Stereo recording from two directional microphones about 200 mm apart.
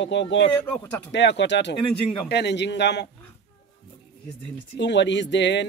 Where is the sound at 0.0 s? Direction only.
65° left (ahead or behind).